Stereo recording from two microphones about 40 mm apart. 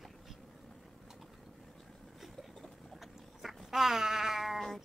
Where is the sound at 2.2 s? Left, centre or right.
Centre.